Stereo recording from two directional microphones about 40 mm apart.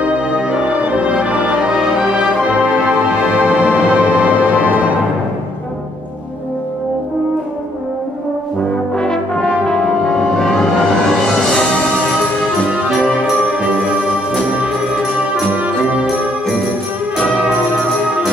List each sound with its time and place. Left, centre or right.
0.0 s music: right
1.7 s music: centre
2.4 s music: right
8.9 s brass instrument: left
10.4 s music: centre
15.5 s music: right